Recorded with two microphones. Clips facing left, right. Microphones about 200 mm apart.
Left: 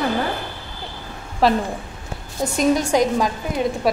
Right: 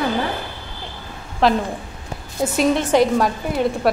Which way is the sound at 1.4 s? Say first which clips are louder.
Even; centre (ahead or behind).